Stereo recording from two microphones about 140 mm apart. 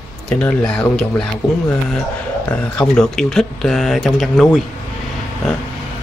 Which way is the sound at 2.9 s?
5° left (ahead or behind).